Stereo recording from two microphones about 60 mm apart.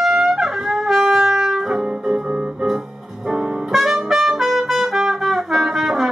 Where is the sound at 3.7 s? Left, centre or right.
Centre.